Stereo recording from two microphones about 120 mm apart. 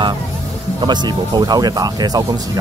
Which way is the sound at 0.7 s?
35° right (ahead or behind).